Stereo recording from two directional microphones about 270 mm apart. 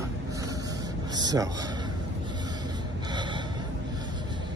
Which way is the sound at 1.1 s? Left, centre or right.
Centre.